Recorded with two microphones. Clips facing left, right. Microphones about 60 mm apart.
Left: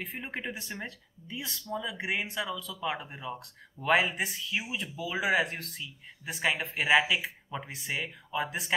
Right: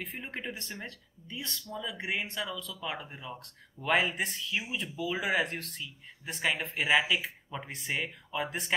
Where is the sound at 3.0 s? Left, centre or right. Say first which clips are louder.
Left 4 dB; centre.